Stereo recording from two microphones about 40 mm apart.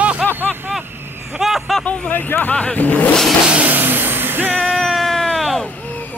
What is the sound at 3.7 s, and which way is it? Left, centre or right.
Music, right.